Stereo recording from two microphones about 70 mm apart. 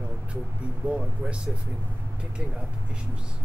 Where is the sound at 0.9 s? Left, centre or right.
Centre.